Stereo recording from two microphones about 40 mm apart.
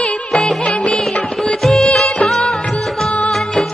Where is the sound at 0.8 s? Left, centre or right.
Centre.